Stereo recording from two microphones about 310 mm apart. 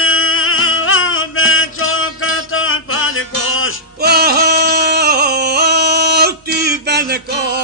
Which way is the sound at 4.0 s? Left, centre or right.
Right.